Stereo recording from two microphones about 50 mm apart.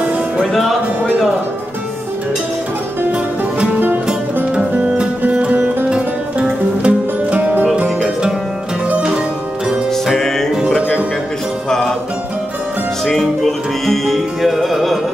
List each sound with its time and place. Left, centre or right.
3.1 s music: right
3.8 s music: right
4.8 s music: centre
5.2 s music: right
8.8 s music: right
13.0 s music: centre